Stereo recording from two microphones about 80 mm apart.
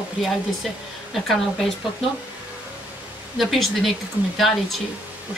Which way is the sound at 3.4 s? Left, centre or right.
Centre.